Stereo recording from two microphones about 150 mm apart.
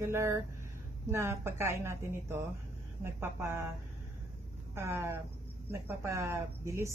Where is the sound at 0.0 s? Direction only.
20° right (ahead or behind).